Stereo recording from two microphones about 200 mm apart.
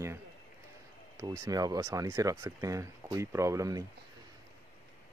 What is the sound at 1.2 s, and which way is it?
Speech, 15° right (ahead or behind).